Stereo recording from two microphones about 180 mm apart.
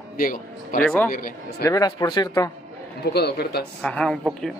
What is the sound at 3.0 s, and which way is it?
Speech, 65° left (ahead or behind).